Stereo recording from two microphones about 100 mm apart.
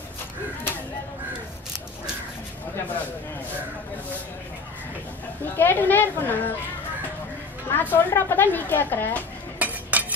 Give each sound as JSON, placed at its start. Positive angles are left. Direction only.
{"t": 5.4, "sound": "a woman's voice", "side_deg": 20}
{"t": 7.7, "sound": "a woman's voice", "side_deg": 20}
{"t": 9.6, "sound": "cutlery", "side_deg": -15}